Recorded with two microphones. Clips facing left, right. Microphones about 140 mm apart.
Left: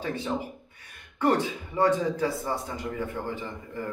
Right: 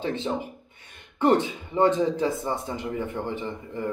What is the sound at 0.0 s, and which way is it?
A man's voice, 20° right (ahead or behind).